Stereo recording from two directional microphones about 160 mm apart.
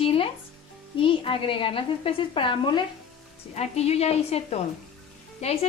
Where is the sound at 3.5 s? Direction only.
40° left (ahead or behind).